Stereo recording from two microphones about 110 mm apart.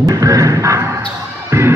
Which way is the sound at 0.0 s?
35° right (ahead or behind).